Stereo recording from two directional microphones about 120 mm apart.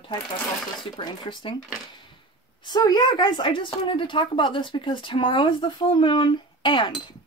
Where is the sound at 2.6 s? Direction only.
35° left (ahead or behind).